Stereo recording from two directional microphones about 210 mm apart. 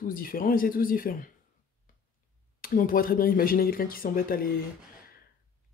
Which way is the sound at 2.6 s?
40° left (ahead or behind).